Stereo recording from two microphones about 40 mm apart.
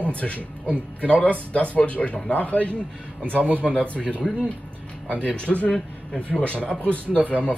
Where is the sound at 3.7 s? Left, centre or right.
Left.